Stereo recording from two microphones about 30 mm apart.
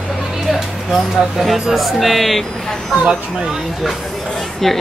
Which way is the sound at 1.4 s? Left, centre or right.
Centre.